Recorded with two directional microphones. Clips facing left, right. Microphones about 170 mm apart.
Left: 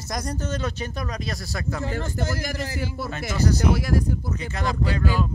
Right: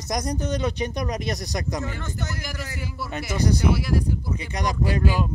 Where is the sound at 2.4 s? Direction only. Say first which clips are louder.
Left 5 dB; 45° left (ahead or behind).